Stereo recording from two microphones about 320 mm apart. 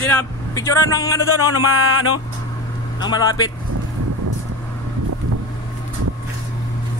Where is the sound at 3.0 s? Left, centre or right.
Centre.